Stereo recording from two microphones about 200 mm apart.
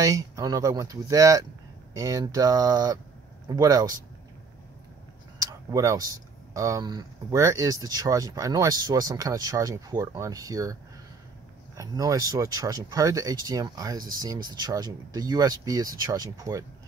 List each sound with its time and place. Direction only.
0.0 s speech: 15° right (ahead or behind)
5.4 s speech: 15° right (ahead or behind)